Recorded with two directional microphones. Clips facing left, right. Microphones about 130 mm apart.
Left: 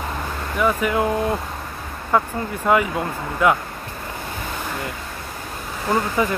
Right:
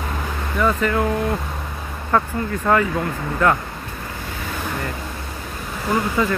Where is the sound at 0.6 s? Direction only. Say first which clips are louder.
Even; 10° left (ahead or behind).